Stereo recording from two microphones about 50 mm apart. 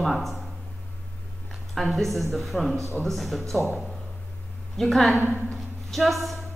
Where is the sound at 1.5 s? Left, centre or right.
Centre.